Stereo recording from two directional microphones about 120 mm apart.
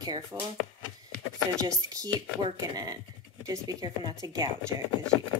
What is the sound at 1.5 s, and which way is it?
Speech, 30° right (ahead or behind).